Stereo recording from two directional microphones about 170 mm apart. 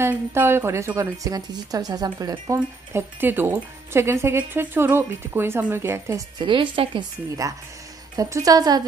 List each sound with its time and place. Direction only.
0.0 s a woman's voice: 15° right (ahead or behind)
2.9 s speech: 15° right (ahead or behind)
6.4 s a woman's voice: 30° right (ahead or behind)